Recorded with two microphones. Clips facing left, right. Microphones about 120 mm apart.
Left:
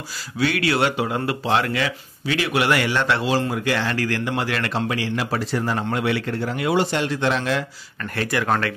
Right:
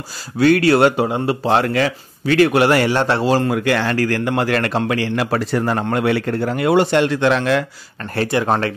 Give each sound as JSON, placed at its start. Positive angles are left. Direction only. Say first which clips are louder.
{"t": 0.4, "sound": "speech", "louder": "right 8 dB", "side_deg": -45}
{"t": 1.0, "sound": "speech", "louder": "right 5 dB", "side_deg": -30}
{"t": 1.4, "sound": "a man's voice", "louder": "right 5 dB", "side_deg": -40}
{"t": 3.4, "sound": "a man's voice", "louder": "right 5 dB", "side_deg": -60}
{"t": 8.0, "sound": "speech", "louder": "right 5 dB", "side_deg": -30}